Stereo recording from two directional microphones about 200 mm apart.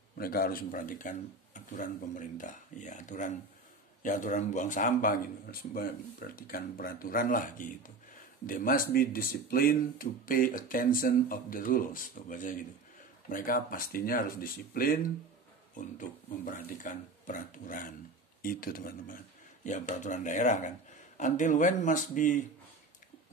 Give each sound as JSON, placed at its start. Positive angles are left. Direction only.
{"t": 0.2, "sound": "speech", "side_deg": 50}